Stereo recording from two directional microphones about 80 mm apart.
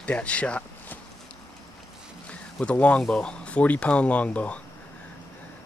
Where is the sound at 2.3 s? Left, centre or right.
Centre.